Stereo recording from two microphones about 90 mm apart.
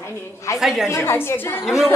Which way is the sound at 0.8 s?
30° left (ahead or behind).